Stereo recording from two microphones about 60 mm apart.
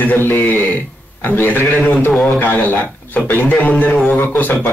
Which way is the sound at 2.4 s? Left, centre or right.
Left.